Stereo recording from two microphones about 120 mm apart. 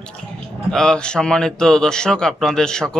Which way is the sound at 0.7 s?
5° left (ahead or behind).